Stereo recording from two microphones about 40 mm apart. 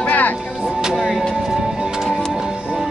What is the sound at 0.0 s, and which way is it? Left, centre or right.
Music, left.